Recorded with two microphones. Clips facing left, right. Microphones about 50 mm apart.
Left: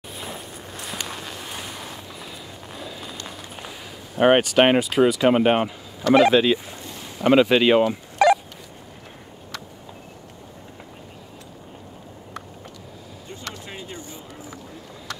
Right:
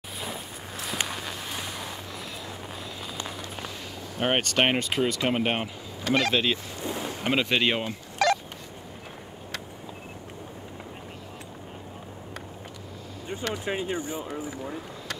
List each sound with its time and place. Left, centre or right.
0.2 s walk: centre
1.0 s a sound: centre
4.2 s speech: centre
6.9 s boat: right
7.2 s speech: centre
7.9 s a sound: centre
13.3 s speech: right